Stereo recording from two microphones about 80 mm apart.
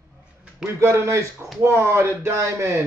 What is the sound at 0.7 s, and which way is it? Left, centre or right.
Speech, right.